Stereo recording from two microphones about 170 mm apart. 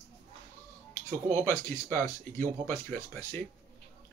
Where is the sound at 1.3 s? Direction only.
15° left (ahead or behind).